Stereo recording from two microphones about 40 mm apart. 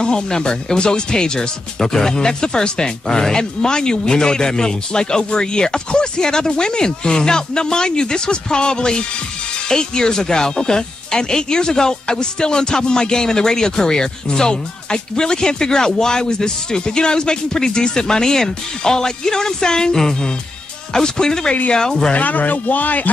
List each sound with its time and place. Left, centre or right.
0.0 s speech: centre
22.1 s a man's voice: left